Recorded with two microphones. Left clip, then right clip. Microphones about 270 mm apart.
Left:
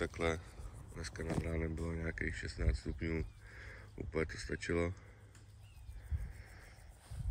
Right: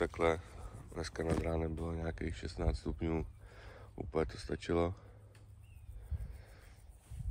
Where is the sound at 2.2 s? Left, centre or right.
Right.